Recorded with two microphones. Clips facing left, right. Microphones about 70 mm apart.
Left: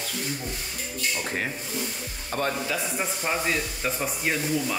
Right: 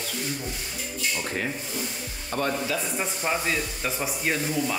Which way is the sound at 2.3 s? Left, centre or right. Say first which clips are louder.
Even; left.